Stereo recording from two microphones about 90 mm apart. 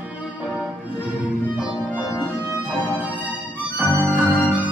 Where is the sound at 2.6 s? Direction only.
15° right (ahead or behind).